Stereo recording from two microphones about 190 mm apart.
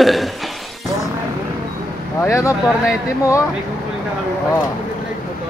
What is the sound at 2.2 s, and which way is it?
Speech, 15° left (ahead or behind).